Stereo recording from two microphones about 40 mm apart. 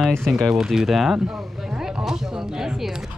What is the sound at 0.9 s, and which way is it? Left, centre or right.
Speech, centre.